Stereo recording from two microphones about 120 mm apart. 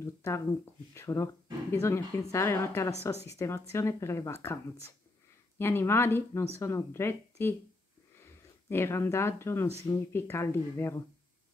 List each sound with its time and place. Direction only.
0.0 s speech: 20° left (ahead or behind)